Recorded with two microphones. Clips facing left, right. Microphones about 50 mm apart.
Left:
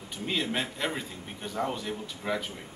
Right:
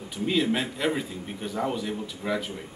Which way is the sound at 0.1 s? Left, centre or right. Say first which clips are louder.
Right 6 dB; centre.